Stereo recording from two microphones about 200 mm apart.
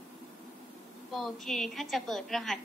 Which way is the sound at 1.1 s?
Centre (ahead or behind).